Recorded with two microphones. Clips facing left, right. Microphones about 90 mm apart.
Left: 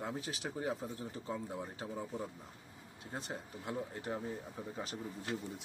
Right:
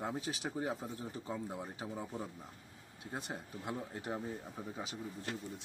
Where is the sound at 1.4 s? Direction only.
10° right (ahead or behind).